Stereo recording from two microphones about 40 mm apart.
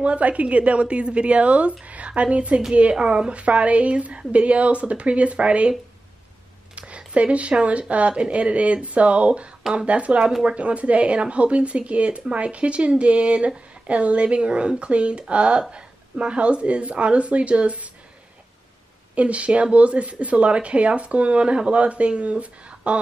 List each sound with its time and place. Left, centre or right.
0.0 s speech: right
7.2 s speech: right
9.6 s a sound: centre
9.8 s speech: right
19.1 s speech: right